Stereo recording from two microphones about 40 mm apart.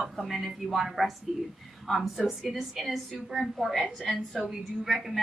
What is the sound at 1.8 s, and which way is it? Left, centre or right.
A woman's voice, centre.